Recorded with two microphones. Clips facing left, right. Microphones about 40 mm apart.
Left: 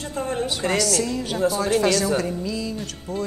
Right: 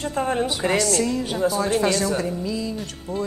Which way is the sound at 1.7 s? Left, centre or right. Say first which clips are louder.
Left 1 dB; centre.